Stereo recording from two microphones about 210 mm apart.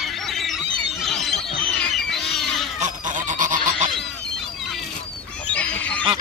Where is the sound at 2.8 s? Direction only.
35° right (ahead or behind).